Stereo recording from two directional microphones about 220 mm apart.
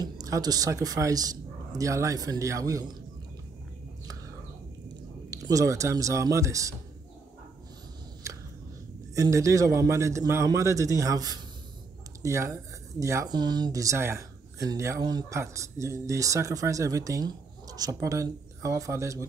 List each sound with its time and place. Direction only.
0.0 s a man's voice: 15° right (ahead or behind)
5.3 s speech: 15° right (ahead or behind)
8.2 s a sound: 15° right (ahead or behind)
9.1 s speech: 15° right (ahead or behind)